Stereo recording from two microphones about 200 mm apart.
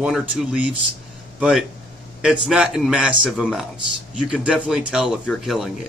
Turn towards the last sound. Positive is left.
turn(degrees=0)  # may be behind; listen again after turning